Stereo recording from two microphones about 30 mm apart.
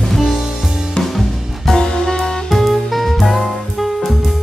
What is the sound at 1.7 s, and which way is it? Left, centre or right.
Music, left.